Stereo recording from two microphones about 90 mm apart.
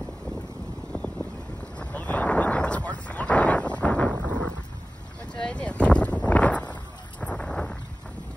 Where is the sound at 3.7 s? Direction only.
15° left (ahead or behind).